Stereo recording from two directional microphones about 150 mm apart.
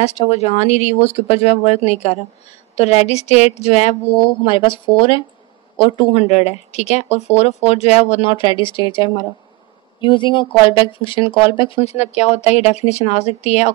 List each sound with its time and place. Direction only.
0.0 s speech: 45° left (ahead or behind)
4.5 s speech: 35° left (ahead or behind)
6.1 s speech: 45° left (ahead or behind)